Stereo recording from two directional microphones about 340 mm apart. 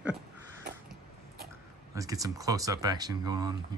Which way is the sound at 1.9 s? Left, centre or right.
Centre.